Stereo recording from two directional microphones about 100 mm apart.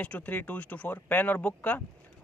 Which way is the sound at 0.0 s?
15° left (ahead or behind).